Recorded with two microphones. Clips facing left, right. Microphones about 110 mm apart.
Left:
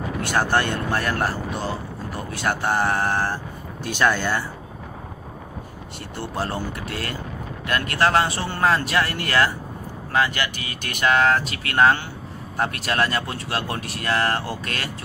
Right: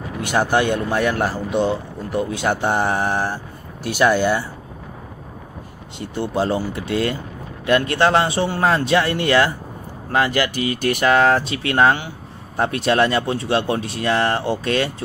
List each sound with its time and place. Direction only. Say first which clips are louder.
0.2 s speech: right 4 dB; 15° right (ahead or behind)
2.1 s speech: right 6 dB; 20° right (ahead or behind)
5.9 s speech: right 7 dB; 20° right (ahead or behind)